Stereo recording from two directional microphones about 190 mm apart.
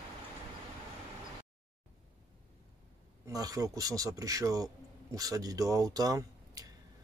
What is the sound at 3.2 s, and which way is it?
A man's voice, 20° right (ahead or behind).